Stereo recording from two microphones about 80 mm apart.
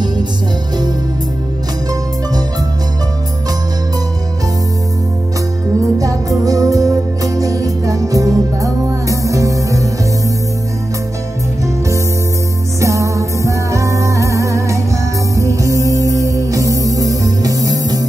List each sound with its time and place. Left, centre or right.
5.9 s music: right
12.8 s music: right